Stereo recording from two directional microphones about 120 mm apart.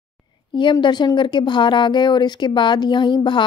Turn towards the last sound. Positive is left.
turn(degrees=40)  # may be behind; listen again after turning